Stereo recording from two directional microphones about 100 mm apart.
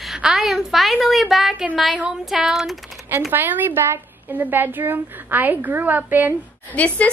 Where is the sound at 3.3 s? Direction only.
20° right (ahead or behind).